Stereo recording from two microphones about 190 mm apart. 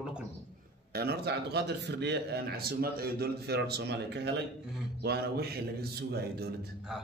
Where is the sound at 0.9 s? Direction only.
55° right (ahead or behind).